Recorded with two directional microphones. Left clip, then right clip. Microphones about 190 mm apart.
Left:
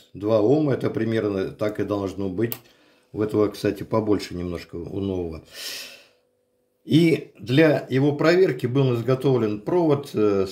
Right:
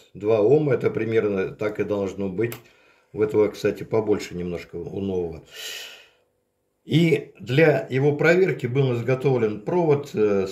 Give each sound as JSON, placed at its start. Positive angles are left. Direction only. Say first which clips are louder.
{"t": 0.2, "sound": "speech", "louder": "right 1 dB", "side_deg": 45}